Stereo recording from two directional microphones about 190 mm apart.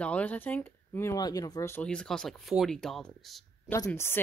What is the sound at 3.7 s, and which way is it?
Speech, 15° left (ahead or behind).